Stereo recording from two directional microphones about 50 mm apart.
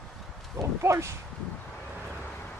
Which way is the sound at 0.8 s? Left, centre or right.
Right.